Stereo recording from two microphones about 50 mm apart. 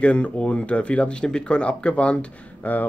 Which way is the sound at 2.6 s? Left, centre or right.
Left.